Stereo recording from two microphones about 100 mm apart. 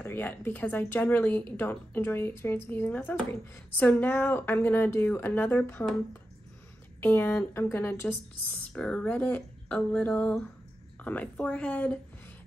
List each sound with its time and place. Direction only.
0.0 s speech: 20° left (ahead or behind)
7.0 s speech: 25° left (ahead or behind)